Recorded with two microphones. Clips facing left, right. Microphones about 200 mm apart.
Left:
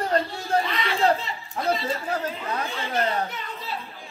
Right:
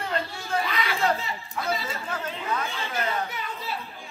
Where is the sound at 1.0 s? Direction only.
35° left (ahead or behind).